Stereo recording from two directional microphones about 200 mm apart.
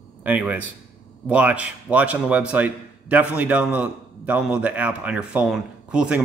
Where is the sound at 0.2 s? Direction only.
10° right (ahead or behind).